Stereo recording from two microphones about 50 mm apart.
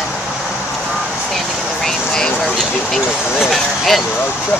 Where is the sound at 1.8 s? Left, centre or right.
Centre.